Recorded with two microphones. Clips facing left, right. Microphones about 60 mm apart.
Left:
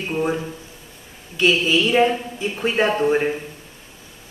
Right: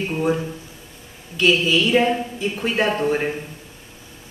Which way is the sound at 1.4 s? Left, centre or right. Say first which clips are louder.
Even; centre.